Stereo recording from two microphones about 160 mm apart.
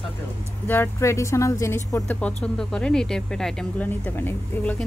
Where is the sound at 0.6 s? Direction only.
15° left (ahead or behind).